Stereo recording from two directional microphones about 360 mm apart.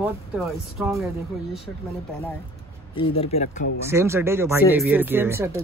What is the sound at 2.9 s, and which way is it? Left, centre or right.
Speech, centre.